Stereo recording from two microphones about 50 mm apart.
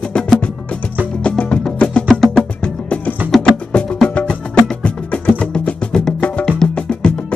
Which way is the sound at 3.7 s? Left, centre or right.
Left.